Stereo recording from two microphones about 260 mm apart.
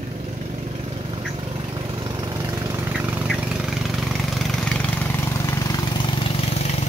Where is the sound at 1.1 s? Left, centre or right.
Centre.